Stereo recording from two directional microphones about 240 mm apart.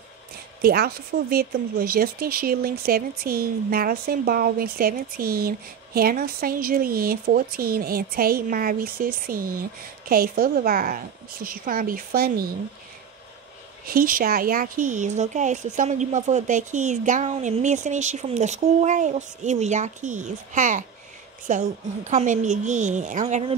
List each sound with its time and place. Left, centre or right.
0.6 s speech: right
13.8 s a woman's voice: right